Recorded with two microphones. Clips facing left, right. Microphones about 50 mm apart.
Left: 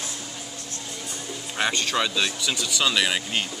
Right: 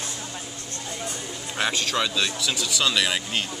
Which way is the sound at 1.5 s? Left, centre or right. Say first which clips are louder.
Left 1 dB; centre.